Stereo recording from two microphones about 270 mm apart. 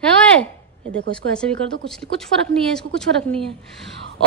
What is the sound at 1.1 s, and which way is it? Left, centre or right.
A woman's voice, centre.